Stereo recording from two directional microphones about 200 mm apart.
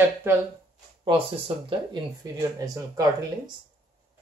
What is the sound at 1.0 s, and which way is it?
A woman's voice, 25° right (ahead or behind).